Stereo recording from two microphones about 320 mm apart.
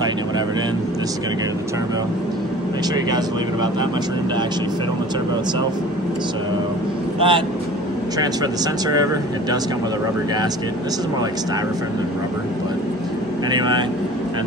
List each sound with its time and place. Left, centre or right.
7.2 s speech: centre